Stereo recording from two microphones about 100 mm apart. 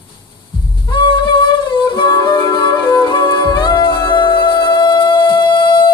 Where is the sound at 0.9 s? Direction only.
50° left (ahead or behind).